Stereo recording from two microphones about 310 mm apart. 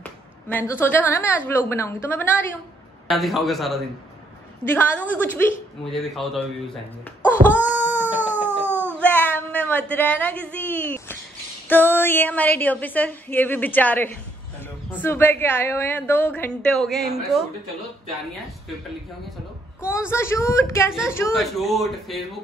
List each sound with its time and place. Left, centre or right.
0.0 s a woman's voice: centre
7.4 s wail: right
7.7 s cat: centre
8.9 s a woman's voice: centre
20.1 s a woman's voice: centre